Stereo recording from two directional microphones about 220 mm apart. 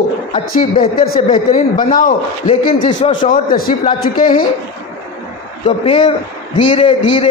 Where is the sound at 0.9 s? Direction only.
40° left (ahead or behind).